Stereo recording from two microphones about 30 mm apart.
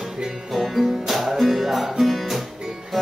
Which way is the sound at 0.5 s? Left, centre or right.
Centre.